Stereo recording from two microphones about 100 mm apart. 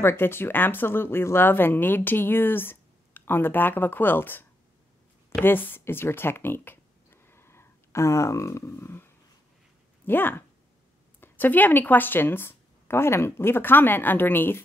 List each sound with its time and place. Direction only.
0.0 s speech: 25° left (ahead or behind)